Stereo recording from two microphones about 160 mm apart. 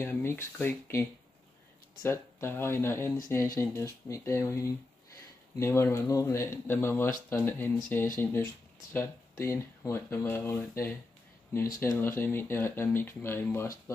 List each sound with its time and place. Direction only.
0.0 s speech: 15° left (ahead or behind)
2.0 s speech: 15° left (ahead or behind)